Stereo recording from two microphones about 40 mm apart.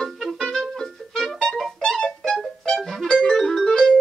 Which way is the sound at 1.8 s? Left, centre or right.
Centre.